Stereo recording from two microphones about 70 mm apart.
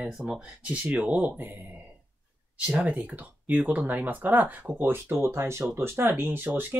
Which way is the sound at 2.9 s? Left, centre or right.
Right.